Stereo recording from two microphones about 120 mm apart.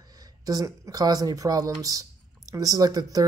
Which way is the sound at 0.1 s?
30° right (ahead or behind).